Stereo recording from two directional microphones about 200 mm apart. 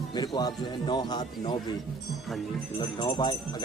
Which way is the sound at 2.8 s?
20° left (ahead or behind).